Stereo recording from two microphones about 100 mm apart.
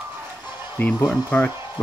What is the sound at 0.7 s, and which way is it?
Speech, 15° left (ahead or behind).